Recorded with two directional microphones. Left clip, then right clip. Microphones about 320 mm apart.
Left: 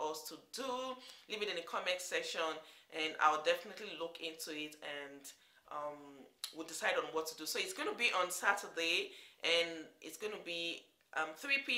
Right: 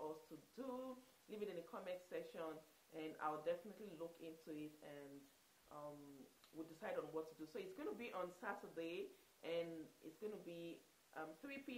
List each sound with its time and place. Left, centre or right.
0.0 s music: left
0.6 s speech: centre